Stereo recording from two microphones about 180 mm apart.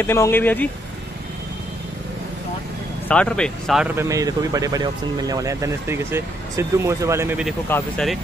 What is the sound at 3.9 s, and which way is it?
Speech, 15° right (ahead or behind).